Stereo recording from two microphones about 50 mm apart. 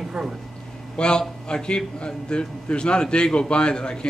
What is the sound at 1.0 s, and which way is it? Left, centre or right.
A man's voice, centre.